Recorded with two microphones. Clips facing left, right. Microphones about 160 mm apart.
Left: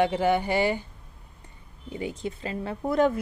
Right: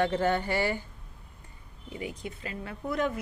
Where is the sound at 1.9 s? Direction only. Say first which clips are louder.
Left 5 dB; 30° left (ahead or behind).